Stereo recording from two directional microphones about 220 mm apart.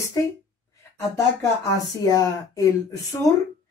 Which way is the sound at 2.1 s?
15° left (ahead or behind).